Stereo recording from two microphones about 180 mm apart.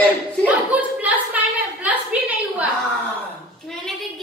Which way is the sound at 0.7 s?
10° right (ahead or behind).